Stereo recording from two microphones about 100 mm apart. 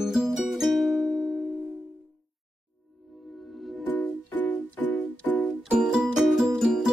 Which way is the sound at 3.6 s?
Centre (ahead or behind).